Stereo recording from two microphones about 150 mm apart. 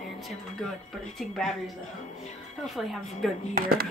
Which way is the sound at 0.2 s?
Centre (ahead or behind).